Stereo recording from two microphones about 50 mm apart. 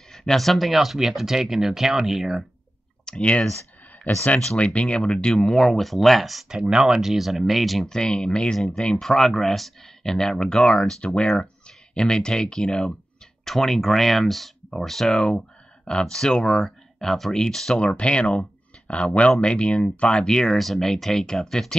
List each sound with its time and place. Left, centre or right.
0.1 s speech: centre
3.1 s speech: centre
4.0 s speech: left
4.6 s speech: left
5.4 s speech: centre
6.5 s speech: centre
7.9 s speech: centre
8.5 s speech: centre
15.1 s speech: left
17.7 s speech: left
20.5 s speech: centre